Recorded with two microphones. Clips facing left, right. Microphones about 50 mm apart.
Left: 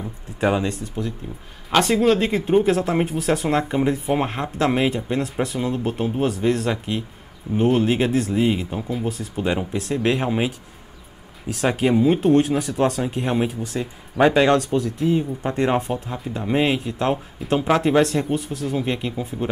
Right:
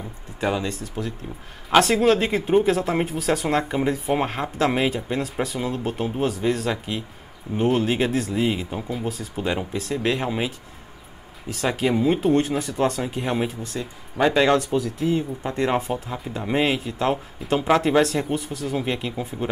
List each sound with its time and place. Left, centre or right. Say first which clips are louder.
0.4 s speech: left 4 dB; centre
1.0 s speech: left 1 dB; centre
1.7 s speech: even; centre
11.7 s speech: left 3 dB; centre
13.6 s speech: left 4 dB; centre
14.4 s speech: left 2 dB; centre
15.4 s speech: left 1 dB; centre